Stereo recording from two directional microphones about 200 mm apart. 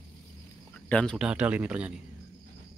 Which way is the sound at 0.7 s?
5° left (ahead or behind).